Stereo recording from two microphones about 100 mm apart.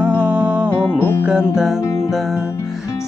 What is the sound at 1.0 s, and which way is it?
Music, 20° left (ahead or behind).